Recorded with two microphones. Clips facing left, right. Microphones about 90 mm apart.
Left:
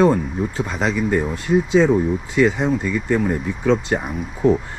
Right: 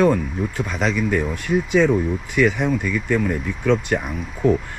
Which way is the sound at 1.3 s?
60° right (ahead or behind).